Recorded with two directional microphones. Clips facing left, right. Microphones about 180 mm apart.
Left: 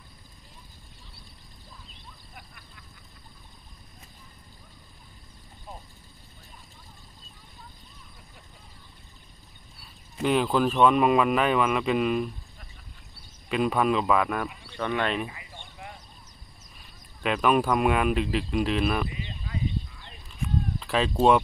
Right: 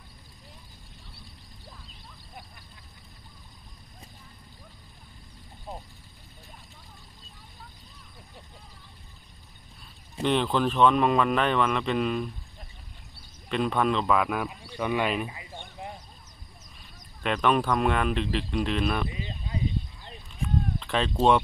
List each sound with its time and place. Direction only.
10.2 s speech: 5° left (ahead or behind)
13.5 s speech: 5° left (ahead or behind)
15.8 s a sound: 35° right (ahead or behind)
17.2 s speech: 5° left (ahead or behind)
19.1 s a sound: 30° right (ahead or behind)
20.4 s bleat: 5° left (ahead or behind)